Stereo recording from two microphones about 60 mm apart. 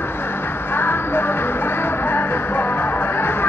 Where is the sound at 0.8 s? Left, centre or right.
Left.